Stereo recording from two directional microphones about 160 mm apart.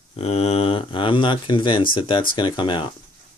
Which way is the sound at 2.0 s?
30° left (ahead or behind).